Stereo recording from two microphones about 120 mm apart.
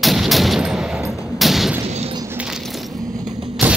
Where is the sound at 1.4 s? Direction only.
Centre (ahead or behind).